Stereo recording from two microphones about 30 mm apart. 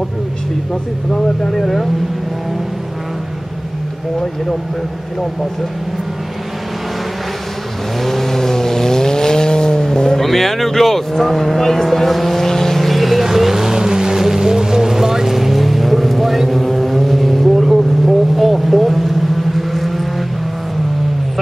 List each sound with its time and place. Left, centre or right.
1.6 s speech: centre
8.0 s vehicle: centre
10.2 s speech: centre
12.4 s vehicle: centre